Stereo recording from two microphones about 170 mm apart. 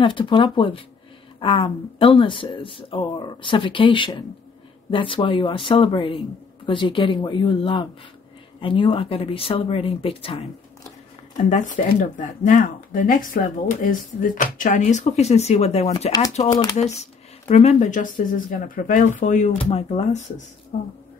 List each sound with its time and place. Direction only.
0.0 s speech: 30° left (ahead or behind)
11.3 s speech: 50° left (ahead or behind)